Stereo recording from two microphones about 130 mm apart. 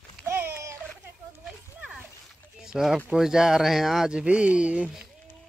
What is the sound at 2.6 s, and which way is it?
Speech, 5° right (ahead or behind).